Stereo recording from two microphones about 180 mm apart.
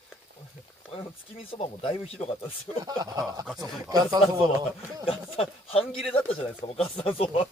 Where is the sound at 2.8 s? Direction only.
20° right (ahead or behind).